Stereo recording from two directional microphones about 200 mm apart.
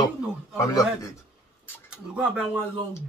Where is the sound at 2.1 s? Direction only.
5° right (ahead or behind).